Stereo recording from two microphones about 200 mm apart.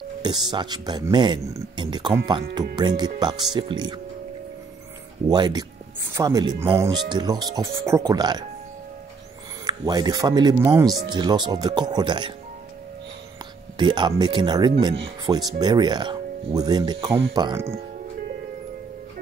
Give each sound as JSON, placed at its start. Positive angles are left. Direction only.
{"t": 0.2, "sound": "speech", "side_deg": -20}
{"t": 5.3, "sound": "speech", "side_deg": -20}
{"t": 9.7, "sound": "speech", "side_deg": -20}
{"t": 13.7, "sound": "speech", "side_deg": -20}